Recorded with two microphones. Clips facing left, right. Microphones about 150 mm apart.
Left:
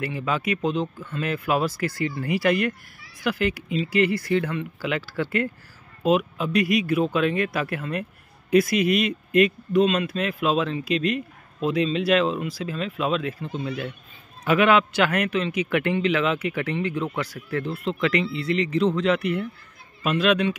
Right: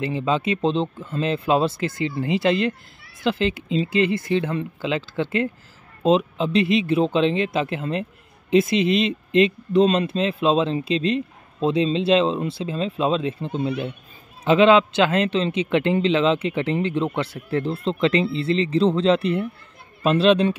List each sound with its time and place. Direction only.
0.0 s speech: 25° right (ahead or behind)